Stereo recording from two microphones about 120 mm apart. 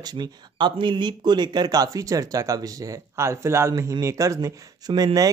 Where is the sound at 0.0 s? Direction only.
35° right (ahead or behind).